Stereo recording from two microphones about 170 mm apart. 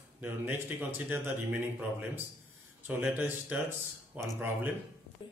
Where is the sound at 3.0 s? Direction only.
10° right (ahead or behind).